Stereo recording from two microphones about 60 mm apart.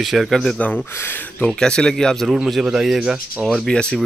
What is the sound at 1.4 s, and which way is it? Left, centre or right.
Speech, centre.